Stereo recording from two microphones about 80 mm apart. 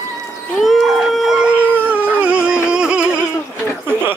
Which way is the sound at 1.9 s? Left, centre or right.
Centre.